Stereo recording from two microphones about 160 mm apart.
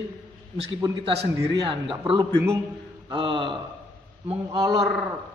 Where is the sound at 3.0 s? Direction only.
30° right (ahead or behind).